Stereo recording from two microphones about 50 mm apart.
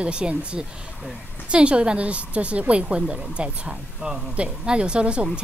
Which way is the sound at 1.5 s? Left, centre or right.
Right.